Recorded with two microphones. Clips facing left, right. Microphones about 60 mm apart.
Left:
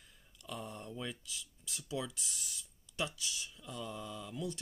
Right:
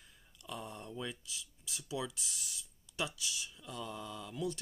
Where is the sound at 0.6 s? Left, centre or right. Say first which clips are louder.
Even; centre.